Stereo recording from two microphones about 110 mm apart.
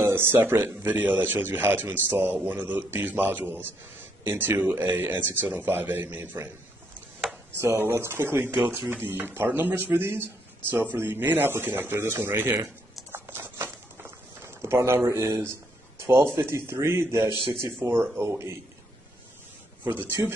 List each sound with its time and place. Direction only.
0.0 s a man's voice: 20° right (ahead or behind)
7.6 s a man's voice: 20° right (ahead or behind)
17.3 s a man's voice: 50° left (ahead or behind)
17.6 s a man's voice: 20° right (ahead or behind)
20.2 s speech: 30° right (ahead or behind)